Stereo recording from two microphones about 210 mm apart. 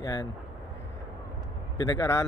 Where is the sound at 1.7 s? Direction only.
15° left (ahead or behind).